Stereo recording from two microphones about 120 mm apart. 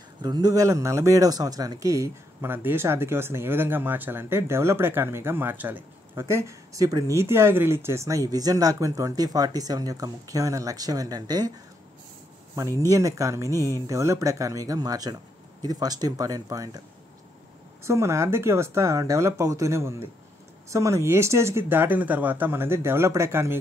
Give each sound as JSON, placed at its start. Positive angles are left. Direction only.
{"t": 0.2, "sound": "speech", "side_deg": -35}
{"t": 12.9, "sound": "speech", "side_deg": -25}
{"t": 13.6, "sound": "speech", "side_deg": 20}
{"t": 13.8, "sound": "speech", "side_deg": -25}
{"t": 17.8, "sound": "speech", "side_deg": -25}